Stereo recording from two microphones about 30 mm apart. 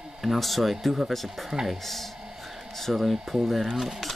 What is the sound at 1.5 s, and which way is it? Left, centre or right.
Speech, centre.